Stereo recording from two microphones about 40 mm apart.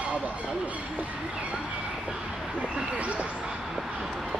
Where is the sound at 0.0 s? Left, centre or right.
Right.